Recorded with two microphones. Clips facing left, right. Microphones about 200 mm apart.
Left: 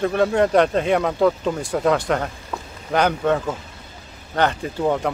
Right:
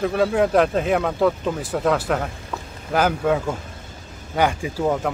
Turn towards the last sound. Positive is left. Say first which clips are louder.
# left 1 dB
turn(degrees=-5)  # may be behind; listen again after turning